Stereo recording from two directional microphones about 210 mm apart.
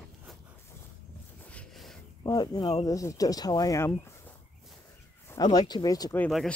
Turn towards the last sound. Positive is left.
turn(degrees=0)  # may be behind; listen again after turning